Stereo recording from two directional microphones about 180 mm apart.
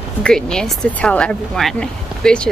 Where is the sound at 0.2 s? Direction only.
5° left (ahead or behind).